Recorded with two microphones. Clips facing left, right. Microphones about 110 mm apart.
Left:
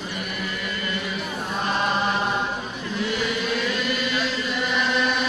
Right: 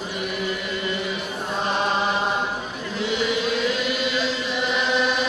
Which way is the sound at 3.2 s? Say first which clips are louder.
Right 3 dB; 20° right (ahead or behind).